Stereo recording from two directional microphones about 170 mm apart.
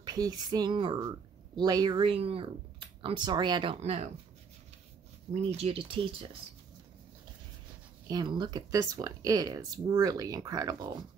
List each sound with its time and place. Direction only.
0.0 s speech: 25° right (ahead or behind)
3.7 s speech: 40° right (ahead or behind)
5.3 s speech: 40° right (ahead or behind)
8.1 s speech: 25° right (ahead or behind)